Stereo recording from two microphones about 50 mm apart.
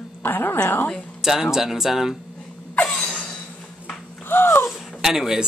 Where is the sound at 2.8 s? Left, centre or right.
Centre.